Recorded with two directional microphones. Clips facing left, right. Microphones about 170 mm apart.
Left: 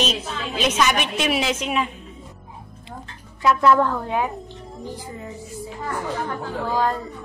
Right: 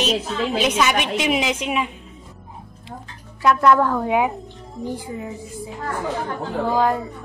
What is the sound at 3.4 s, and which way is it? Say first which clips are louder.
Speech: right 1 dB; 5° left (ahead or behind).